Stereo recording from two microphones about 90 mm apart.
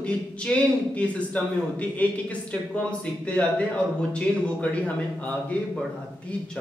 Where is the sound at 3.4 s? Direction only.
10° left (ahead or behind).